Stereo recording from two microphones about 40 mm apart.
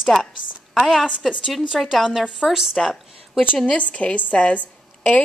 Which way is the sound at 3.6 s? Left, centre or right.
Left.